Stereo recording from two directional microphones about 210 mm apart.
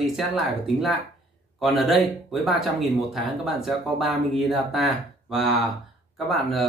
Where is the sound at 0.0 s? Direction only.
Centre (ahead or behind).